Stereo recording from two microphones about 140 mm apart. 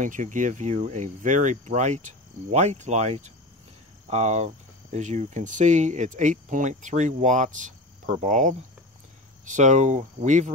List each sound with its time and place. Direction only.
0.0 s speech: 65° right (ahead or behind)